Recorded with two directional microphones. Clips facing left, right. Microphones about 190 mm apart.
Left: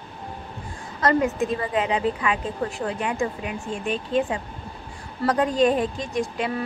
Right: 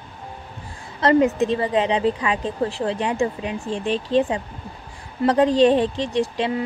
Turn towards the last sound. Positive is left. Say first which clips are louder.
# right 4 dB
turn(degrees=-30)  # may be behind; listen again after turning